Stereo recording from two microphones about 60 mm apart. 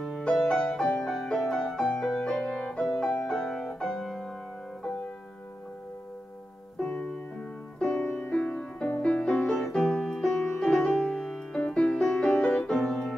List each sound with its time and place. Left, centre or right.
0.4 s music: centre
6.8 s music: centre
9.2 s music: centre